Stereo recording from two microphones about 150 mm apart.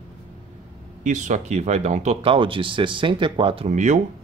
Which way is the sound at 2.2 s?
35° right (ahead or behind).